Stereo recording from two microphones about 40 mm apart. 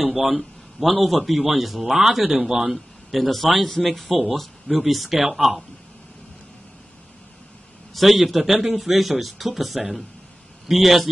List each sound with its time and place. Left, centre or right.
0.0 s a man's voice: centre
7.9 s a man's voice: centre